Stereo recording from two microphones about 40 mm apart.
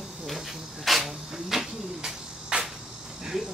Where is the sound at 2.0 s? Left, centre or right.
Right.